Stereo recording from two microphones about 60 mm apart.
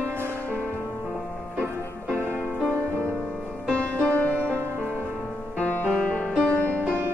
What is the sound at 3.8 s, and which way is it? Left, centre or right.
Music, left.